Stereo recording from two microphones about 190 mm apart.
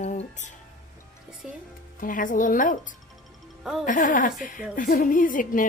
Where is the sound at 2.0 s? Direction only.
45° left (ahead or behind).